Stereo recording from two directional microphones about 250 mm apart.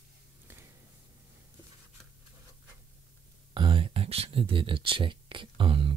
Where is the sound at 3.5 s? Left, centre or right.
Centre.